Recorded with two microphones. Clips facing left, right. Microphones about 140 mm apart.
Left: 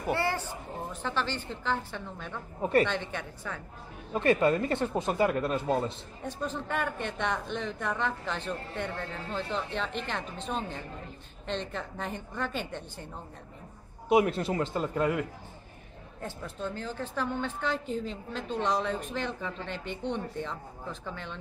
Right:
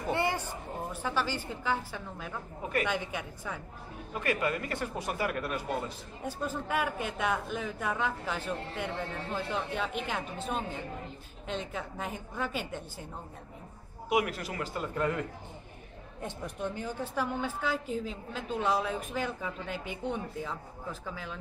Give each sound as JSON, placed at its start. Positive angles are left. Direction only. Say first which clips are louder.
{"t": 0.1, "sound": "a woman's voice", "louder": "left 1 dB", "side_deg": -15}
{"t": 4.1, "sound": "speech", "louder": "left 7 dB", "side_deg": 30}
{"t": 6.2, "sound": "a woman's voice", "louder": "even", "side_deg": -10}
{"t": 14.0, "sound": "speech", "louder": "left 5 dB", "side_deg": 30}
{"t": 16.2, "sound": "a woman's voice", "louder": "right 1 dB", "side_deg": -15}